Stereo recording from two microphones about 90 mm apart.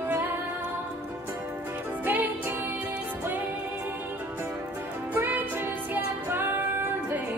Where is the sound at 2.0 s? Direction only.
20° right (ahead or behind).